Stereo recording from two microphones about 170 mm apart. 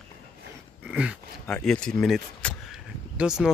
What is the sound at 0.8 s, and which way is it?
Speech, 5° right (ahead or behind).